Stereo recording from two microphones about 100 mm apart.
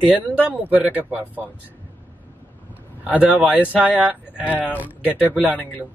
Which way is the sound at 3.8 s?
15° right (ahead or behind).